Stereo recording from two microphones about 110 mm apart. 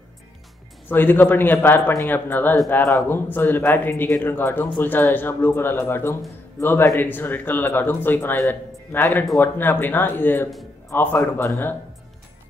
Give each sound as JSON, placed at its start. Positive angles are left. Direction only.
{"t": 0.8, "sound": "a man's voice", "side_deg": 20}